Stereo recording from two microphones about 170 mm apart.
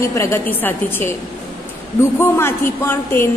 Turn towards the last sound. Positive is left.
turn(degrees=15)  # may be behind; listen again after turning